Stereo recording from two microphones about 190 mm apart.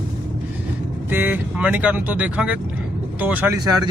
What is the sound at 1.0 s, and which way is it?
Speech, 10° right (ahead or behind).